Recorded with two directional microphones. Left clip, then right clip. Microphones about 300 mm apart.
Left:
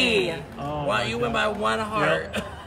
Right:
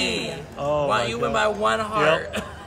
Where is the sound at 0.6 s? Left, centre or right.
Right.